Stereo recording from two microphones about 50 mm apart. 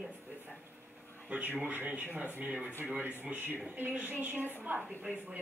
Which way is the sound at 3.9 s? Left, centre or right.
Right.